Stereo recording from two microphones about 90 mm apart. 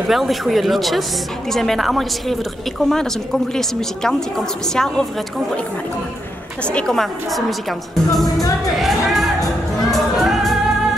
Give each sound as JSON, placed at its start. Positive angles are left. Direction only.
{"t": 0.1, "sound": "a woman's voice", "side_deg": 0}
{"t": 6.7, "sound": "a woman's voice", "side_deg": 10}
{"t": 8.7, "sound": "music", "side_deg": 0}